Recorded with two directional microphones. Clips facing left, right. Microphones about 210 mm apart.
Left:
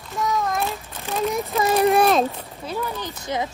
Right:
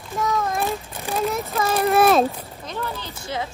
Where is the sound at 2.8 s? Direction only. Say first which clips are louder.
Left 2 dB; 15° left (ahead or behind).